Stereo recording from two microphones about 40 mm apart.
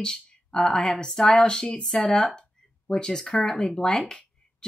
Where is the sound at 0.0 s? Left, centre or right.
Centre.